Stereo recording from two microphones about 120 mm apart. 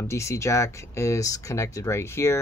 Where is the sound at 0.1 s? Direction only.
25° left (ahead or behind).